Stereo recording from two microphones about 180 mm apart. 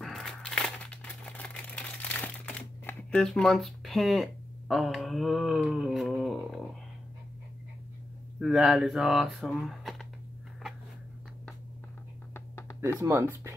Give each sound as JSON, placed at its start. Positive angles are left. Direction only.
{"t": 0.0, "sound": "crumpling", "side_deg": 0}
{"t": 8.4, "sound": "speech", "side_deg": 0}
{"t": 12.4, "sound": "a sound", "side_deg": 15}
{"t": 13.0, "sound": "speech", "side_deg": -15}